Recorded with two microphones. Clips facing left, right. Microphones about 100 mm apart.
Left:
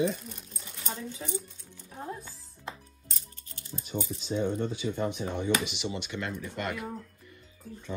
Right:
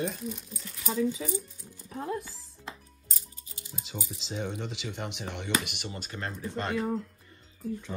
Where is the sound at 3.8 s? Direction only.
90° right; by 6.8 s 35° right (ahead or behind).